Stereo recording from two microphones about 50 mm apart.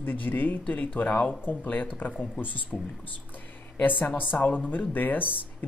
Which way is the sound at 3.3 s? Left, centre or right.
Left.